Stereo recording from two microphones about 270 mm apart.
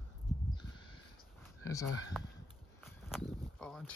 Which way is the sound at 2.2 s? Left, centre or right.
Centre.